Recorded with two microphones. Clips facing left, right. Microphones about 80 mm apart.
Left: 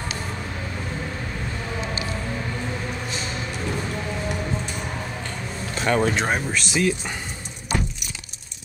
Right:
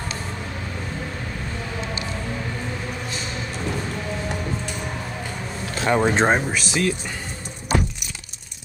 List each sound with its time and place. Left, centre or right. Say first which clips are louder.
5.9 s speech: right 1 dB; centre
6.1 s speech: right 5 dB; right
6.5 s speech: even; centre